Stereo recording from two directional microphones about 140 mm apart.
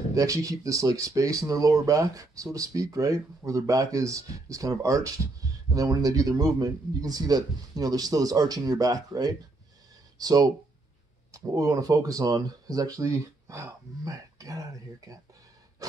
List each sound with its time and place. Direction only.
0.1 s speech: 25° right (ahead or behind)